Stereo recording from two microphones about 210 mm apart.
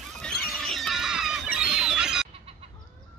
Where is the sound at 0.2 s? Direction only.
5° left (ahead or behind).